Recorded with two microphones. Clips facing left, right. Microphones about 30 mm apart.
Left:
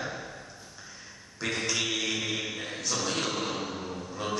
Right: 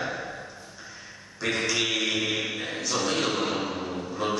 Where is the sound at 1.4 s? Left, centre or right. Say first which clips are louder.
Right 4 dB; centre.